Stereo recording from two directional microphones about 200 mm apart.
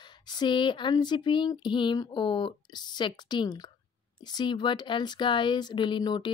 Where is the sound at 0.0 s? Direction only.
20° left (ahead or behind).